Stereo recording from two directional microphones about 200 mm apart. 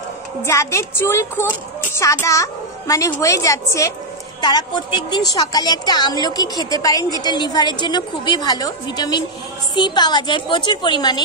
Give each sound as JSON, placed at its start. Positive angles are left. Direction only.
{"t": 0.4, "sound": "a woman's voice", "side_deg": 15}